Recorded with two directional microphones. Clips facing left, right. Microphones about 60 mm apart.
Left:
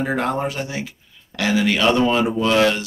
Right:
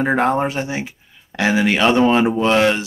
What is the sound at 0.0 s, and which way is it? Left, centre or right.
Speech, right.